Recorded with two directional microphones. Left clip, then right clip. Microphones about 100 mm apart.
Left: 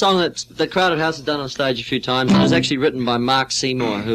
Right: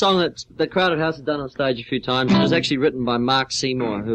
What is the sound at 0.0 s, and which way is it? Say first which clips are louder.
Speech: left 2 dB; 25° left (ahead or behind).